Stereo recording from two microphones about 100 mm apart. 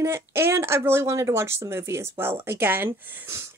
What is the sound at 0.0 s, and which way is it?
Speech, 25° right (ahead or behind).